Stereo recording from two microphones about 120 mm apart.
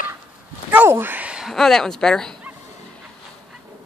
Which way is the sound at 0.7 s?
15° right (ahead or behind).